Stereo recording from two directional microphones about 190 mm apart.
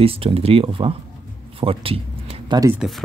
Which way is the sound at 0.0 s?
30° right (ahead or behind).